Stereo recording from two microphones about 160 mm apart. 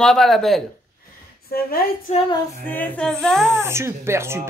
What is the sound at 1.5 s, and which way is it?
Speech, 70° left (ahead or behind).